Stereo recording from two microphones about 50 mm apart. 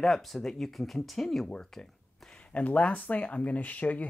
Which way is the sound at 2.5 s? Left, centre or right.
Left.